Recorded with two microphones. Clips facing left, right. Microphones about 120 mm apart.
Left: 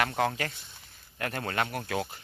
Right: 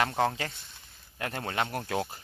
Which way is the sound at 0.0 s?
25° right (ahead or behind).